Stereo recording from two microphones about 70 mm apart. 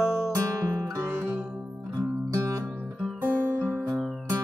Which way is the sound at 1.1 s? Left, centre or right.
Right.